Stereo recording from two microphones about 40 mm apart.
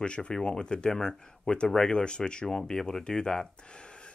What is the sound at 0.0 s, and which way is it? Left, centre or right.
Speech, left.